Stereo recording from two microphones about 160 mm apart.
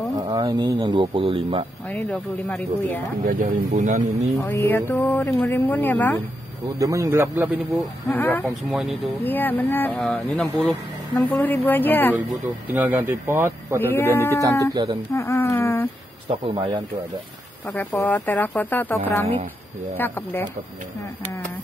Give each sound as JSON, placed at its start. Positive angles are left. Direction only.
{"t": 0.4, "sound": "speech", "side_deg": -25}
{"t": 1.9, "sound": "speech", "side_deg": 5}
{"t": 3.3, "sound": "speech", "side_deg": -60}
{"t": 4.4, "sound": "speech", "side_deg": 10}
{"t": 6.8, "sound": "speech", "side_deg": -20}
{"t": 8.1, "sound": "speech", "side_deg": 15}
{"t": 8.5, "sound": "speech", "side_deg": -5}
{"t": 9.2, "sound": "speech", "side_deg": 10}
{"t": 12.7, "sound": "speech", "side_deg": -10}
{"t": 13.9, "sound": "speech", "side_deg": 15}
{"t": 14.7, "sound": "speech", "side_deg": -30}
{"t": 15.1, "sound": "speech", "side_deg": 15}
{"t": 16.3, "sound": "speech", "side_deg": -35}
{"t": 17.9, "sound": "speech", "side_deg": 10}